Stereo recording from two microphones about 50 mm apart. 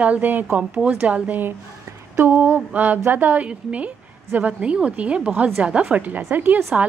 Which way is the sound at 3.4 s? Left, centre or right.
Right.